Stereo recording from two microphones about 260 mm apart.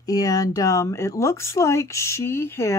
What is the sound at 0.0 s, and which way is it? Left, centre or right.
Speech, centre.